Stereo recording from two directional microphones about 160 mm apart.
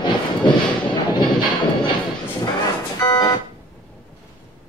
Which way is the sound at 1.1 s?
30° left (ahead or behind).